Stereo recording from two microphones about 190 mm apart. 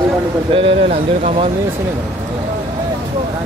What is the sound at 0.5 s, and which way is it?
Speech, 30° right (ahead or behind).